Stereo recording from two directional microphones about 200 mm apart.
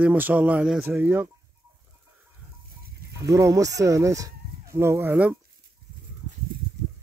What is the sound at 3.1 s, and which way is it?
Speech, 15° right (ahead or behind).